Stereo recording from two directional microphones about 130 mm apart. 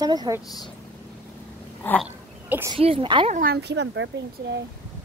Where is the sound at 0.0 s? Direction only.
30° right (ahead or behind).